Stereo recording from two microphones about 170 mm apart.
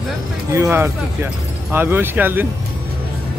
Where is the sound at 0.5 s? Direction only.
15° right (ahead or behind).